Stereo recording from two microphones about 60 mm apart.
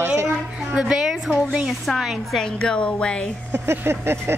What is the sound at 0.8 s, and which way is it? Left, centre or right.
Speech, centre.